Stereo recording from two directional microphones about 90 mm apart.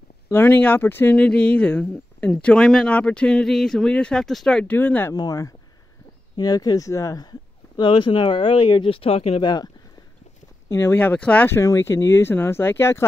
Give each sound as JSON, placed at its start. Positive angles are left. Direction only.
{"t": 0.3, "sound": "speech", "side_deg": 20}
{"t": 4.7, "sound": "speech", "side_deg": 20}
{"t": 5.1, "sound": "speech", "side_deg": 45}
{"t": 7.2, "sound": "speech", "side_deg": 55}
{"t": 9.4, "sound": "speech", "side_deg": 55}
{"t": 10.7, "sound": "speech", "side_deg": 30}
{"t": 11.0, "sound": "speech", "side_deg": 15}
{"t": 11.5, "sound": "speech", "side_deg": 30}